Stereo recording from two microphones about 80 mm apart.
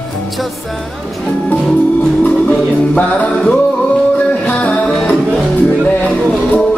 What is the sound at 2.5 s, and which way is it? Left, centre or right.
Music, centre.